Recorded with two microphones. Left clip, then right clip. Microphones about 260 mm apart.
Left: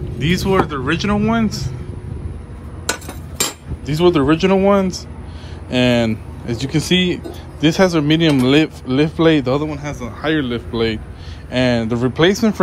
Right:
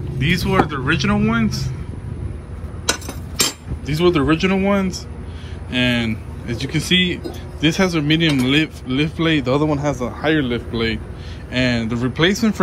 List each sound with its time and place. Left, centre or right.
0.2 s speech: centre
2.9 s a sound: centre
3.8 s speech: centre
9.7 s speech: centre